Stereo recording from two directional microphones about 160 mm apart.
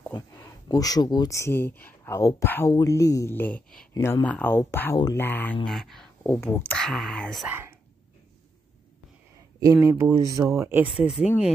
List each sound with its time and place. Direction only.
0.7 s speech: 25° left (ahead or behind)
5.2 s speech: 10° left (ahead or behind)
6.8 s speech: centre (ahead or behind)
7.4 s speech: 15° right (ahead or behind)
9.6 s speech: 20° right (ahead or behind)